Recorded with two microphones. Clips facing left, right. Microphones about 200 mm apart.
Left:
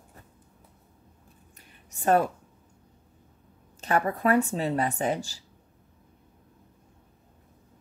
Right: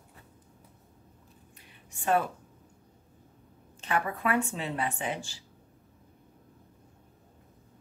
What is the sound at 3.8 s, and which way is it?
Speech, 40° left (ahead or behind).